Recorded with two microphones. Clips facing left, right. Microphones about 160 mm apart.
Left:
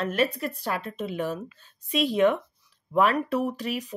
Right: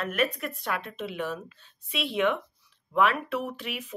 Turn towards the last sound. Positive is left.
turn(degrees=40)  # may be behind; listen again after turning